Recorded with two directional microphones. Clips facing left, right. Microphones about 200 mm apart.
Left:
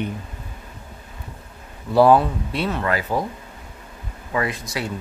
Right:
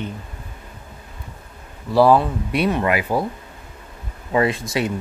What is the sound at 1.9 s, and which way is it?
Speech, centre (ahead or behind).